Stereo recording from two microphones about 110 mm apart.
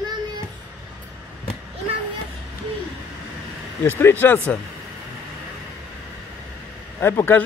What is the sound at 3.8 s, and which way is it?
Speech, 20° left (ahead or behind).